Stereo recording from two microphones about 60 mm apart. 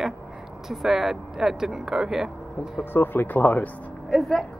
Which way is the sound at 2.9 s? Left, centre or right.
Left.